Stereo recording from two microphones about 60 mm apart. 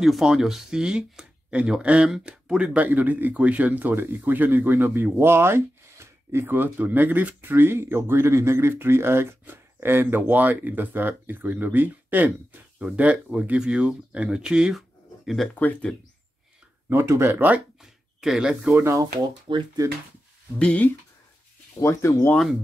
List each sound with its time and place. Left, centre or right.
0.0 s speech: centre
2.0 s speech: centre; by 12.3 s right
12.9 s speech: right
14.8 s a sound: centre
15.9 s speech: centre
16.9 s speech: right
18.2 s speech: centre
19.8 s speech: right
20.5 s speech: centre
21.7 s speech: left